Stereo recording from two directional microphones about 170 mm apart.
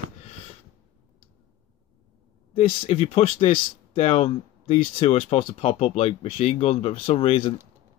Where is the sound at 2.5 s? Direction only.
35° left (ahead or behind).